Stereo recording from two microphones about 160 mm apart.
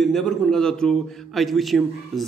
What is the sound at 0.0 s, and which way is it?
A man's voice, 5° left (ahead or behind).